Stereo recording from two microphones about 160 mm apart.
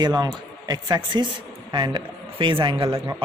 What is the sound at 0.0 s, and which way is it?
A man's voice, 25° right (ahead or behind).